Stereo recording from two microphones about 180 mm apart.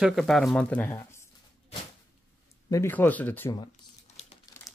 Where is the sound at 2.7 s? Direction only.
15° left (ahead or behind).